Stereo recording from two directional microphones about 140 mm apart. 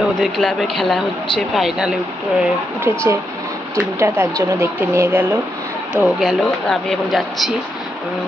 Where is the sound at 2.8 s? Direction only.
20° right (ahead or behind).